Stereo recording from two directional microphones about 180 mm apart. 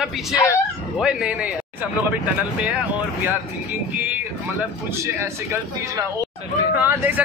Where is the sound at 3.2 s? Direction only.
10° right (ahead or behind).